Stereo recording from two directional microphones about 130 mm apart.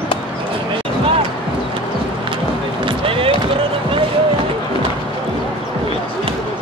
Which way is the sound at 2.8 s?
45° right (ahead or behind).